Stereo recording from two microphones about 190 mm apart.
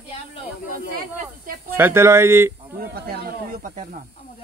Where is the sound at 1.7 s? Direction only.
10° right (ahead or behind).